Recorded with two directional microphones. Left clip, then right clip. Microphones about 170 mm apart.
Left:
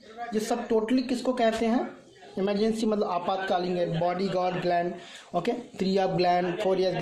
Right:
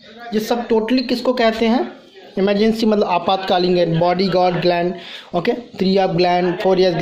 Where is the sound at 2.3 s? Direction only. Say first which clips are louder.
Right 10 dB; 30° right (ahead or behind).